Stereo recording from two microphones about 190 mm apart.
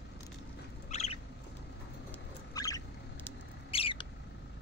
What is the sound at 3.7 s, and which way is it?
Rodents, 30° left (ahead or behind).